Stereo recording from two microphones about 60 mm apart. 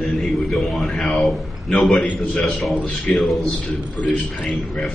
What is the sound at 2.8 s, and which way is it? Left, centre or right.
Speech, left.